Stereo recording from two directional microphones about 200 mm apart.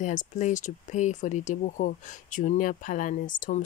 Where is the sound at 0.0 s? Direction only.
40° left (ahead or behind).